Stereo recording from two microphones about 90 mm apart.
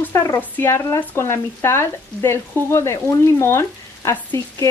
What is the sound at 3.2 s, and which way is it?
Frying, 30° left (ahead or behind).